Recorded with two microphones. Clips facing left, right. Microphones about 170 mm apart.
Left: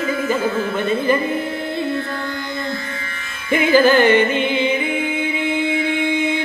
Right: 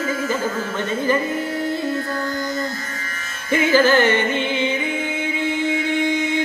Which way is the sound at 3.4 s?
45° right (ahead or behind).